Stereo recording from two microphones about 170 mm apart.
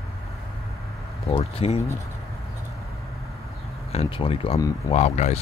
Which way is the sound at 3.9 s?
35° left (ahead or behind).